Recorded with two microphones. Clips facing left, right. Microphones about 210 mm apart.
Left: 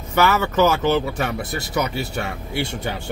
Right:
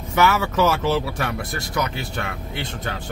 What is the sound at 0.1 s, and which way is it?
Speech, centre (ahead or behind).